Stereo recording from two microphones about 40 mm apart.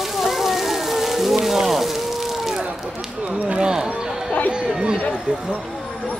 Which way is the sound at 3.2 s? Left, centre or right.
Right.